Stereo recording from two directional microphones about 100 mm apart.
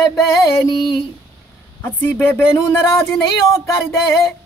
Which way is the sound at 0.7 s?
50° left (ahead or behind).